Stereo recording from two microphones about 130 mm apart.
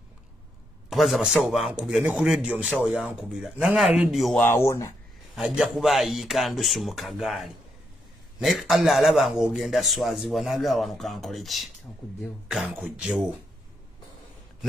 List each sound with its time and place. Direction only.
0.8 s a man's voice: centre (ahead or behind)
4.4 s speech: 20° left (ahead or behind)
5.3 s a man's voice: 5° right (ahead or behind)